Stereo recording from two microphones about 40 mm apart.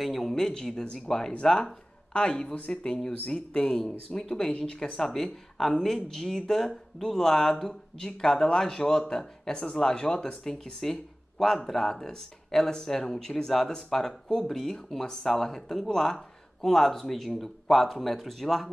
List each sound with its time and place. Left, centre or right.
0.0 s speech: centre